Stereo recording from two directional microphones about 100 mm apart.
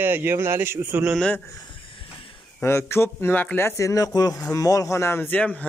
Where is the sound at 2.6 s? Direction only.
25° left (ahead or behind).